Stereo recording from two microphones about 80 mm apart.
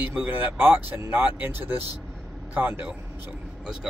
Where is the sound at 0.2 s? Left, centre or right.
Right.